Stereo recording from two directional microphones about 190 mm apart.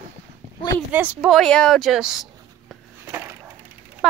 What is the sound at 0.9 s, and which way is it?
Speech, 10° right (ahead or behind).